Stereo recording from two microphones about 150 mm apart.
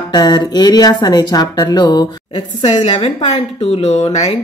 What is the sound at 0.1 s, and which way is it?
Speech, 30° left (ahead or behind).